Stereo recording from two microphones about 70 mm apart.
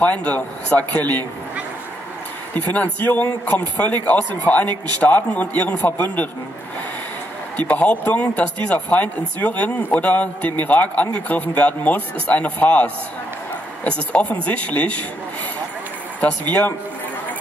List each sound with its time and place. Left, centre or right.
0.0 s speech: centre
2.5 s speech: left
5.0 s speech: centre
7.5 s speech: left
16.2 s speech: left